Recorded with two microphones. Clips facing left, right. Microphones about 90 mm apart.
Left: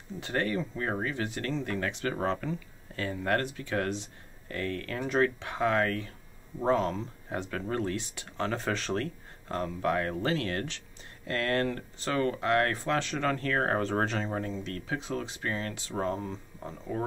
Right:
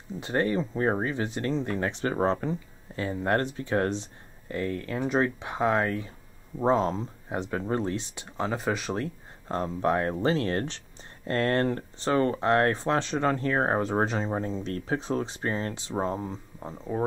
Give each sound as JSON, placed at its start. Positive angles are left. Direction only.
{"t": 0.2, "sound": "speech", "side_deg": -25}
{"t": 4.5, "sound": "speech", "side_deg": -20}
{"t": 9.5, "sound": "speech", "side_deg": -30}